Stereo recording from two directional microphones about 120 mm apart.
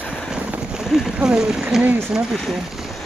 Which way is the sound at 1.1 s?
5° right (ahead or behind).